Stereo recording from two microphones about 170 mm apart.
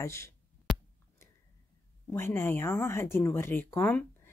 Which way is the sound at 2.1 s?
15° left (ahead or behind).